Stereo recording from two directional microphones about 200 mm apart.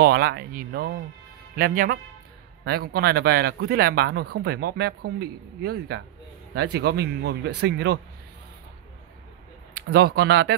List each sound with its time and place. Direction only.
0.0 s speech: 50° right (ahead or behind)
9.8 s speech: 55° right (ahead or behind)